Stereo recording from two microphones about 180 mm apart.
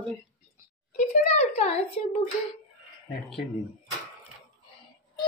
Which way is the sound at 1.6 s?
35° left (ahead or behind).